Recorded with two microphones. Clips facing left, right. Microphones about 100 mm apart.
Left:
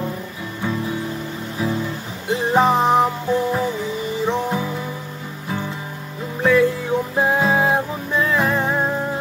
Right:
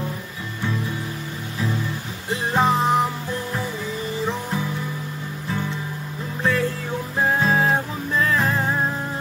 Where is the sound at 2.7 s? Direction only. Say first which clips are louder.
Left 3 dB; 30° left (ahead or behind).